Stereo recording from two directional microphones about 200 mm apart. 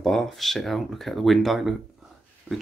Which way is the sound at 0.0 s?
Centre (ahead or behind).